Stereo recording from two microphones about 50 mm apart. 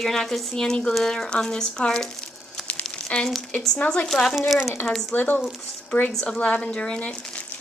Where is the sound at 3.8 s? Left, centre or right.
Left.